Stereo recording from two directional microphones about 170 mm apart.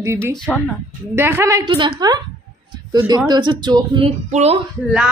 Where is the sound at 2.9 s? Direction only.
25° right (ahead or behind).